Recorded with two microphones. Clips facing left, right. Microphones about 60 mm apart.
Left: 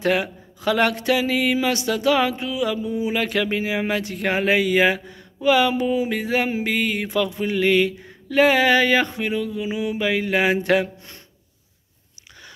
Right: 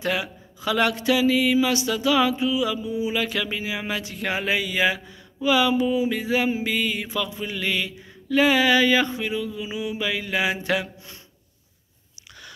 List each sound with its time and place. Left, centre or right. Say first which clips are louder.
0.0 s speech: left 5 dB; left